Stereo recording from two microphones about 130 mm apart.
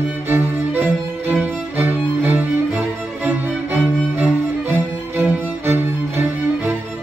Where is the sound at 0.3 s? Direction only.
15° right (ahead or behind).